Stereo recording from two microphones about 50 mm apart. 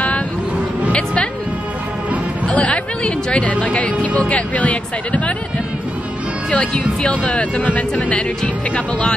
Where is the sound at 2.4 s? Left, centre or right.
Left.